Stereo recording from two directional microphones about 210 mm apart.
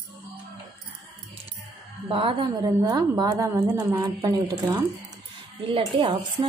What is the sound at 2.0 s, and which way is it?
A woman's voice, 25° right (ahead or behind).